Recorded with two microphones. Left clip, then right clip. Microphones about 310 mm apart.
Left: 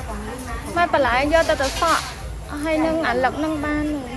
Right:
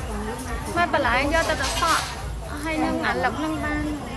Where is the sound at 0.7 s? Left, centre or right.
Centre.